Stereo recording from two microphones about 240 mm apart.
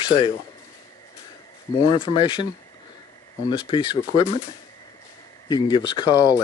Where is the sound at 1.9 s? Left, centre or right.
Left.